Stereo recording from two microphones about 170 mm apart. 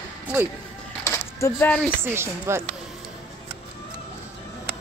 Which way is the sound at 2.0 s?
15° right (ahead or behind).